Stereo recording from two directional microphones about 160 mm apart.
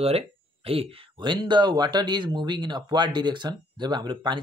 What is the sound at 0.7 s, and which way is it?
Speech, 30° right (ahead or behind).